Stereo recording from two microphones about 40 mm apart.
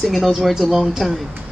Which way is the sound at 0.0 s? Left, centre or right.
Centre.